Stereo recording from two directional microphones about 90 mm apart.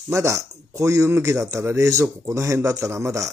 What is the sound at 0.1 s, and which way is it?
Speech, 35° right (ahead or behind).